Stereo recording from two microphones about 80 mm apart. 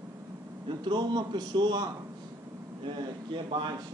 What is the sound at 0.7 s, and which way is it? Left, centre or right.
A man's voice, right.